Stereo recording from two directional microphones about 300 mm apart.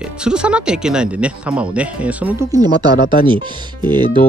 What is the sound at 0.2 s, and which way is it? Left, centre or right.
Speech, centre.